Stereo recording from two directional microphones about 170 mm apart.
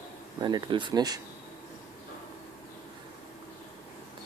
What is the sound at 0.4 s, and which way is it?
Speech, 25° right (ahead or behind).